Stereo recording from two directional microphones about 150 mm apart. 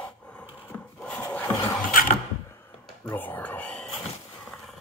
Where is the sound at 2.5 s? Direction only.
15° left (ahead or behind).